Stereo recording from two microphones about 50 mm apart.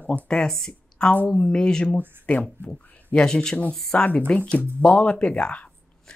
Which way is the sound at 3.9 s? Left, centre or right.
Left.